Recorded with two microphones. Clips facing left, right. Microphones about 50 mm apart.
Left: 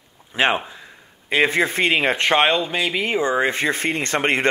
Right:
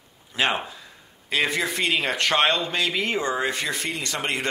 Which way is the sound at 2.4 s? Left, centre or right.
Centre.